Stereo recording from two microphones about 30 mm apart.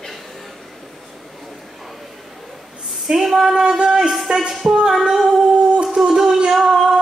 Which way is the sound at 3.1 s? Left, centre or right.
Centre.